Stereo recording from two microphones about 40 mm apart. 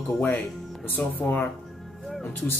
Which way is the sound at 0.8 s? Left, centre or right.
Left.